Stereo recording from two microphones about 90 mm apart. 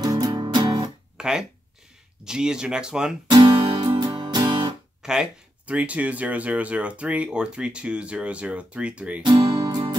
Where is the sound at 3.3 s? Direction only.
45° right (ahead or behind).